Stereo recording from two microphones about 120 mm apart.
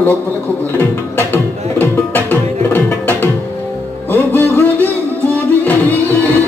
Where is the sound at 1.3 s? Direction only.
15° left (ahead or behind).